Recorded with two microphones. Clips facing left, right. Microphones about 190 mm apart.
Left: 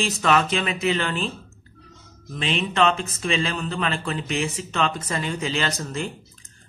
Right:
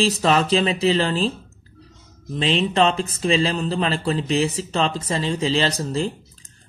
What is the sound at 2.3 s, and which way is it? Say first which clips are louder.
A man's voice: right 4 dB; 30° right (ahead or behind).